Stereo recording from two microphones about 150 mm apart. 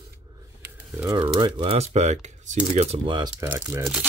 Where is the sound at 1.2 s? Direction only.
30° right (ahead or behind); by 2.6 s 50° right (ahead or behind).